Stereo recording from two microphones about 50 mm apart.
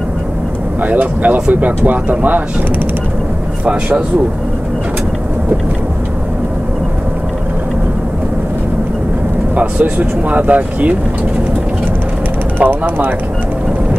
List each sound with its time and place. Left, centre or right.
0.8 s speech: right
9.6 s speech: right
12.5 s speech: right